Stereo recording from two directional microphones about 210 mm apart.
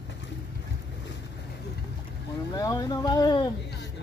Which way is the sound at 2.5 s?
15° left (ahead or behind).